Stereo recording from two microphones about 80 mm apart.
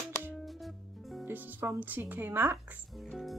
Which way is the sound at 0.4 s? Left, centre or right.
Centre.